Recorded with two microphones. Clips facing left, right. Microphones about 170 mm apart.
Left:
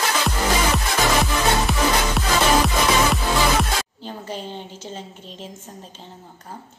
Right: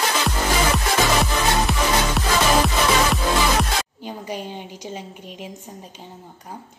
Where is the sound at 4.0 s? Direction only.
10° right (ahead or behind).